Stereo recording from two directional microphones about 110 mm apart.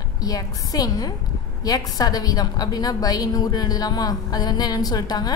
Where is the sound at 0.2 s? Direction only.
35° left (ahead or behind).